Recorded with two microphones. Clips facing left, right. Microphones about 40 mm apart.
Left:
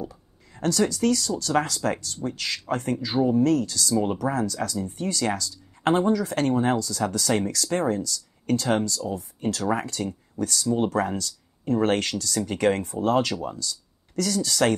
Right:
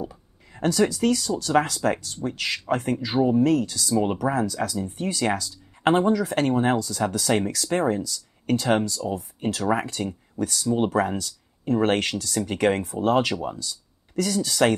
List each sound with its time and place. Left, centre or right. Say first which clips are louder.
0.0 s speech: right 2 dB; centre
3.9 s speech: right 2 dB; right
4.3 s speech: right 2 dB; centre